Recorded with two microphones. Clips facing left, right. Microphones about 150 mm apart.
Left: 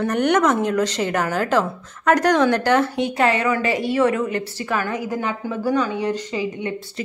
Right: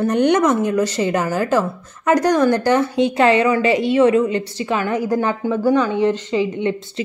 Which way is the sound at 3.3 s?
45° left (ahead or behind).